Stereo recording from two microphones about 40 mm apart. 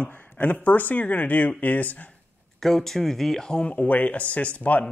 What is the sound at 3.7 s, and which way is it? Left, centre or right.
Speech, left.